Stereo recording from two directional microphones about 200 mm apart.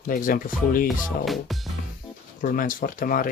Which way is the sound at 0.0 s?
45° left (ahead or behind).